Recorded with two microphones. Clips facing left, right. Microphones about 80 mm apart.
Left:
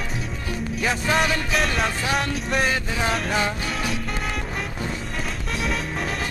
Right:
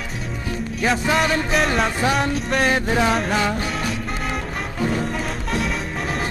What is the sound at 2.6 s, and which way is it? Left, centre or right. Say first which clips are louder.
Music: right 7 dB; right.